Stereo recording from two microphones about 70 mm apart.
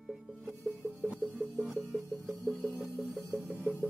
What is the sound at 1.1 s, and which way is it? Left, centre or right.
Music, centre.